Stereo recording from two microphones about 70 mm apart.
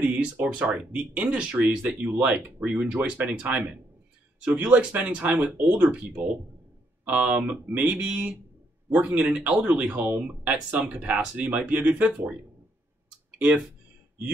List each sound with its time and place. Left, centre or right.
0.0 s speech: centre
7.1 s speech: centre